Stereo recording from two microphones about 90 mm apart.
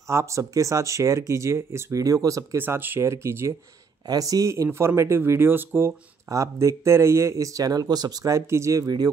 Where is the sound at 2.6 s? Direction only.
25° right (ahead or behind).